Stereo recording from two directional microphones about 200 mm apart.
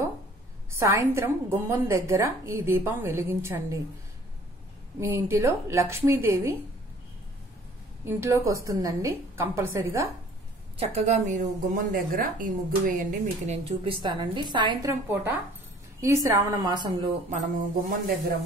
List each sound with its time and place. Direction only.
0.7 s a woman's voice: 15° right (ahead or behind)
5.0 s a woman's voice: 15° right (ahead or behind)
8.0 s a woman's voice: 15° right (ahead or behind)
10.8 s a woman's voice: 35° right (ahead or behind)
14.9 s a woman's voice: 10° right (ahead or behind)
17.3 s a woman's voice: 40° right (ahead or behind)